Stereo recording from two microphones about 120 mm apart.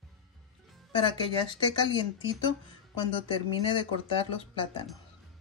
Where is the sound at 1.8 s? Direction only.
40° left (ahead or behind).